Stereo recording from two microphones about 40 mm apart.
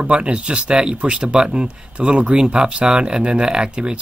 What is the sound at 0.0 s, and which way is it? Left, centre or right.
Speech, right.